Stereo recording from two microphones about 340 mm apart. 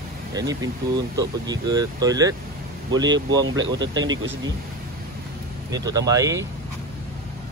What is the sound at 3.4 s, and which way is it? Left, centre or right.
Speech, right.